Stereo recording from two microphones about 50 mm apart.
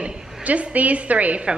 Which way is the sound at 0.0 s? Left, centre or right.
Right.